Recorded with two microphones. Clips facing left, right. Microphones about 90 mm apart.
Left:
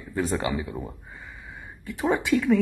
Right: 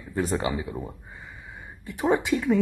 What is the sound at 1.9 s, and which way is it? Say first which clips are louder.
Speech: even; 30° right (ahead or behind).